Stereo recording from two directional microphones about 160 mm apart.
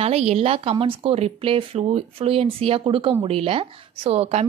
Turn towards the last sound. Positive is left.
turn(degrees=-40)  # may be behind; listen again after turning